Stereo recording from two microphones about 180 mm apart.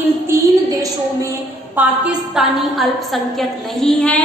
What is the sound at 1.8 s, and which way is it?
A woman's voice, 5° right (ahead or behind).